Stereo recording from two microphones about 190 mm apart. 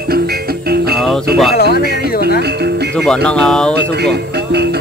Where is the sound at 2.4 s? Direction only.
60° right (ahead or behind).